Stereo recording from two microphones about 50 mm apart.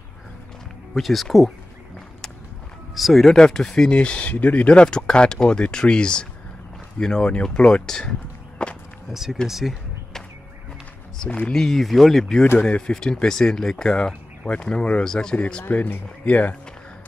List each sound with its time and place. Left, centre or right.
0.9 s speech: centre
2.9 s speech: centre
3.3 s speech: centre
3.9 s speech: left
4.8 s speech: centre
9.1 s speech: centre
11.2 s speech: left
11.5 s speech: centre
12.5 s speech: left
12.9 s speech: centre; by 16.5 s left